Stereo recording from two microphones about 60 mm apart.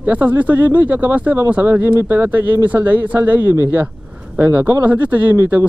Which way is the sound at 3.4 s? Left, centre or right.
Left.